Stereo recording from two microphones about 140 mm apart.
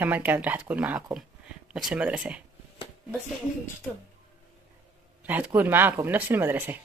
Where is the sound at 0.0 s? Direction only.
10° right (ahead or behind).